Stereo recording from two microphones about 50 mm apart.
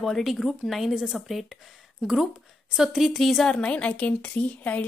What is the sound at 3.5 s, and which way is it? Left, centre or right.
A woman's voice, centre.